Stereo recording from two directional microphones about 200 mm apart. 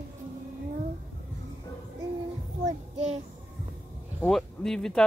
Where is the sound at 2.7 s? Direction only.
35° right (ahead or behind).